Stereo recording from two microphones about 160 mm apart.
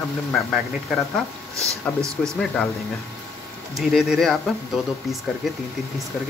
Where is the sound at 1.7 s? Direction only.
20° right (ahead or behind).